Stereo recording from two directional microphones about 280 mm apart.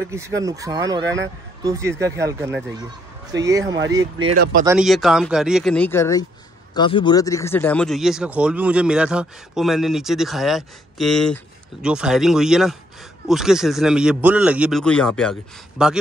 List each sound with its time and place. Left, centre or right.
0.1 s speech: centre
4.4 s speech: right
4.6 s speech: centre